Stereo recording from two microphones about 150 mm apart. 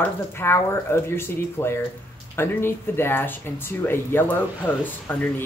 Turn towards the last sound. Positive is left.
turn(degrees=15)  # may be behind; listen again after turning